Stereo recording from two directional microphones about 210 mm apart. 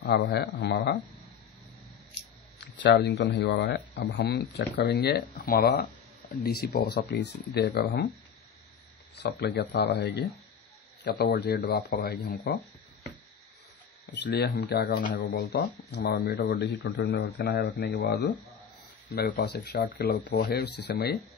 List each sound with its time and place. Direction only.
0.0 s speech: 50° left (ahead or behind)
2.6 s speech: 50° left (ahead or behind)
9.1 s speech: 50° left (ahead or behind)
14.1 s speech: 55° left (ahead or behind)